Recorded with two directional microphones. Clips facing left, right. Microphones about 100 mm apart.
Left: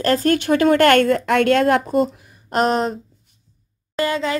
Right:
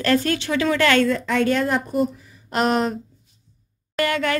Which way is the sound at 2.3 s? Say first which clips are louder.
Left 2 dB; 40° left (ahead or behind).